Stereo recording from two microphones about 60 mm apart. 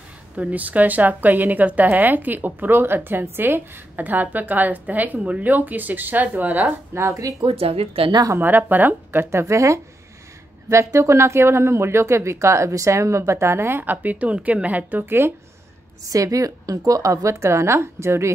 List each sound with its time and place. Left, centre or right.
0.4 s a woman's voice: right
6.9 s a woman's voice: right
8.4 s speech: right
16.1 s a woman's voice: right